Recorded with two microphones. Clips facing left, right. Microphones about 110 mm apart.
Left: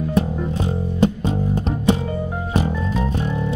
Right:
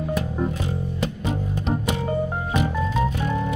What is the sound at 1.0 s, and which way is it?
Music, 30° left (ahead or behind).